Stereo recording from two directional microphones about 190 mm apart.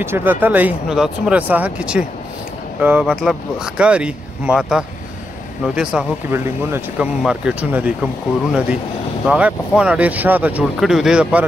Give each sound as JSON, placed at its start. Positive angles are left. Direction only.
{"t": 0.0, "sound": "speech", "side_deg": -10}